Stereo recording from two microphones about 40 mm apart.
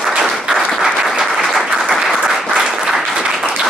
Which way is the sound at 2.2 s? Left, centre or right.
Centre.